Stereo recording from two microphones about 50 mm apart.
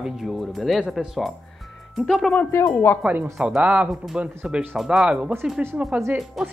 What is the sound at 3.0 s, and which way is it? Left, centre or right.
Speech, right.